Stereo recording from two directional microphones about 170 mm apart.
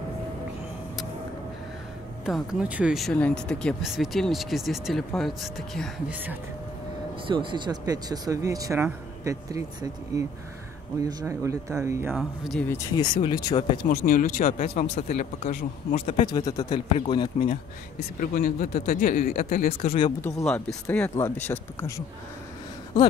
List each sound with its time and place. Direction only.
2.2 s speech: 5° right (ahead or behind)
7.2 s speech: 30° right (ahead or behind)
12.1 s speech: centre (ahead or behind)
12.6 s speech: 15° left (ahead or behind)
13.0 s speech: 30° left (ahead or behind)
13.8 s speech: 55° left (ahead or behind)
14.6 s speech: 45° left (ahead or behind)
16.3 s speech: 20° left (ahead or behind)
17.9 s speech: 55° left (ahead or behind)
20.2 s speech: 10° left (ahead or behind)